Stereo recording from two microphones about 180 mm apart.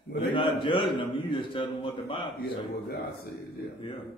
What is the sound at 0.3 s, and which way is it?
A man's voice, 30° left (ahead or behind).